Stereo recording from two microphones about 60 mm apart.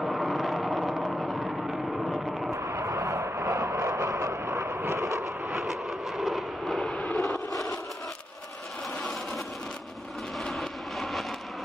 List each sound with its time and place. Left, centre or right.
0.0 s vehicle: centre
2.5 s vehicle: right
5.5 s vehicle: centre
10.5 s vehicle: centre